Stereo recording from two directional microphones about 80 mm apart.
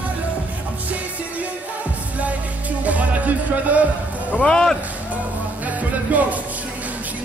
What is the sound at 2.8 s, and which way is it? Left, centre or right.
Music, centre.